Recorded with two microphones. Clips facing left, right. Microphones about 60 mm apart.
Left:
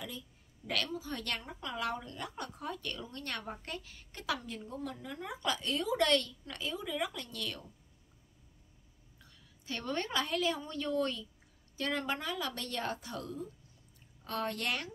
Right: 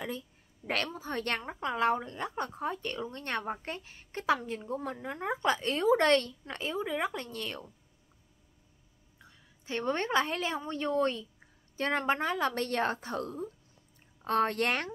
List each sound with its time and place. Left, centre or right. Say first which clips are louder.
0.7 s speech: right 3 dB; right
9.2 s a woman's voice: right 3 dB; right